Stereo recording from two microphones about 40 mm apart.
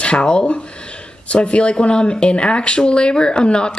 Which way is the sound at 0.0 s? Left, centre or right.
Left.